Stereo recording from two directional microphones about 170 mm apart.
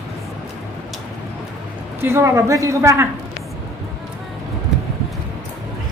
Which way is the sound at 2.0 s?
15° right (ahead or behind).